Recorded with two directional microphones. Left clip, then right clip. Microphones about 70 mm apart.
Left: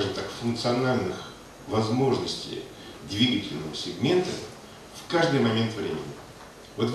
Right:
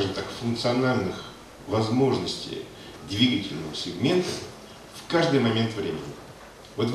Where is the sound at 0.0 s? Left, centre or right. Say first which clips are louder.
Right 1 dB; centre.